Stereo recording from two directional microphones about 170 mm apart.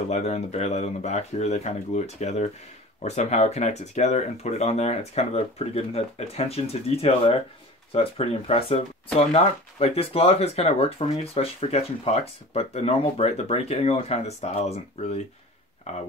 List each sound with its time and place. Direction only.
0.1 s speech: 40° left (ahead or behind)